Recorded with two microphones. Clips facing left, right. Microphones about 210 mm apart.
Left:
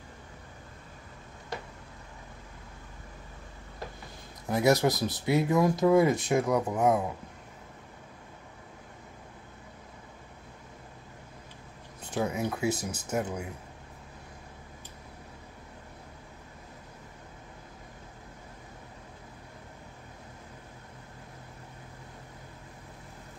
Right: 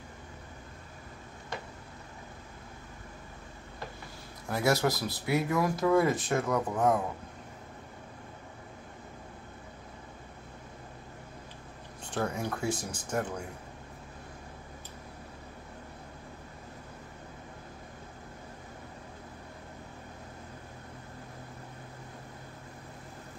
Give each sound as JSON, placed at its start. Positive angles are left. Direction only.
{"t": 4.5, "sound": "speech", "side_deg": 20}
{"t": 12.1, "sound": "speech", "side_deg": 5}